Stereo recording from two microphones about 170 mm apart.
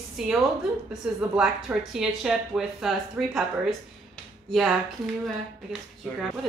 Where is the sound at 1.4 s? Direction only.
5° right (ahead or behind).